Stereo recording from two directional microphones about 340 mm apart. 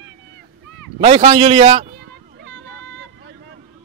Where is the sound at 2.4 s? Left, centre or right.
Right.